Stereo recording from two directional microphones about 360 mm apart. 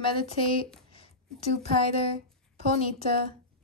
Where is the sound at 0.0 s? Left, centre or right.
Centre.